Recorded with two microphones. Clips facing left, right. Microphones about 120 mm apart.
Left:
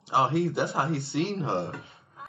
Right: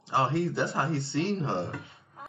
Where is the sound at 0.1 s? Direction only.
15° left (ahead or behind).